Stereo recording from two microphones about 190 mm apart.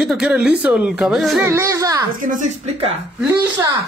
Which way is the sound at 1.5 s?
15° right (ahead or behind).